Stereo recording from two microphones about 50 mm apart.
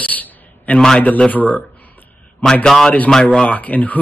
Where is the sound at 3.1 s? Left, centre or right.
Centre.